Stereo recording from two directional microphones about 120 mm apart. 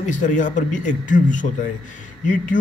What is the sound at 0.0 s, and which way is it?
Speech, 90° left.